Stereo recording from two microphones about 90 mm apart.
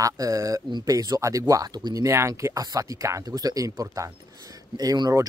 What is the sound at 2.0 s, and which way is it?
Speech, 35° right (ahead or behind).